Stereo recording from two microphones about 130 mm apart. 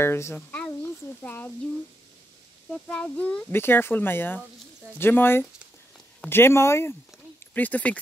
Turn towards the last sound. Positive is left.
turn(degrees=10)  # may be behind; listen again after turning